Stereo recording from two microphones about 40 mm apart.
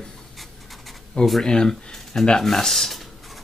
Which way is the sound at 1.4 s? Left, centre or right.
Centre.